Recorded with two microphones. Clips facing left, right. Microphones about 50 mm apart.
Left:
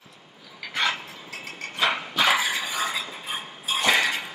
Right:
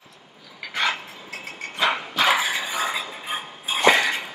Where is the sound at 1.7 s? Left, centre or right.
Centre.